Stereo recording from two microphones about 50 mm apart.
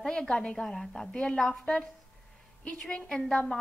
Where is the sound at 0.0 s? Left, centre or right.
Centre.